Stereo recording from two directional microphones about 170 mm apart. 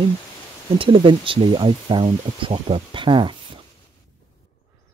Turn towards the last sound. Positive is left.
turn(degrees=-30)  # may be behind; listen again after turning